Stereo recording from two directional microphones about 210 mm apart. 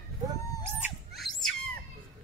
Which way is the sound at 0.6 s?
5° right (ahead or behind).